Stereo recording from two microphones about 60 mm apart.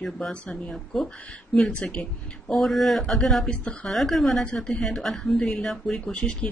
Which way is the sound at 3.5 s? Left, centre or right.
Centre.